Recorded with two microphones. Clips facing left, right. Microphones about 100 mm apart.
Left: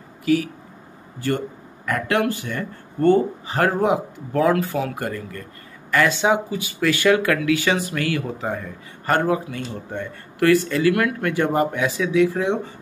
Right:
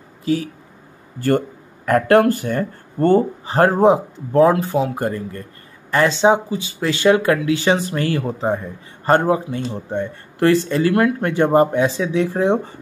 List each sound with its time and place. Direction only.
0.2 s speech: 30° right (ahead or behind)
1.9 s speech: 45° right (ahead or behind)